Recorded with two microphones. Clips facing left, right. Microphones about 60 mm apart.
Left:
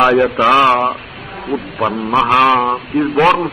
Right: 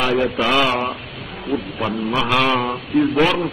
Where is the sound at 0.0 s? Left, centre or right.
Left.